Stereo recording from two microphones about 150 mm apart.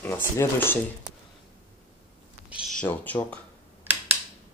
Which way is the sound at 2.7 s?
10° left (ahead or behind).